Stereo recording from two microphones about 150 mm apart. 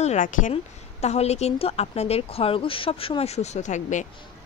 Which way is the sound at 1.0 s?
45° left (ahead or behind).